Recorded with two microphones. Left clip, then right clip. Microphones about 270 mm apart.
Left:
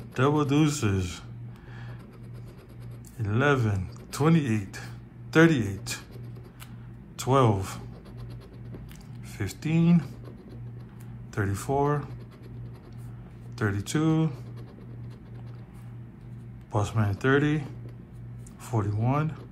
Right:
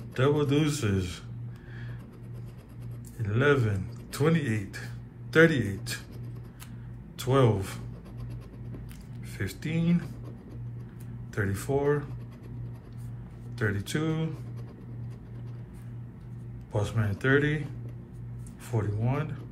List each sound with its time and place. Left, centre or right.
0.1 s a man's voice: centre
3.2 s speech: centre
7.2 s a man's voice: centre
9.4 s a man's voice: centre
11.3 s a man's voice: centre
13.6 s a man's voice: centre
16.7 s a man's voice: centre
18.7 s a man's voice: centre